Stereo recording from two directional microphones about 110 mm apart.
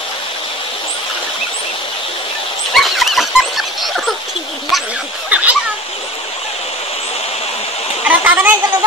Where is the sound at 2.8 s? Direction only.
Centre (ahead or behind).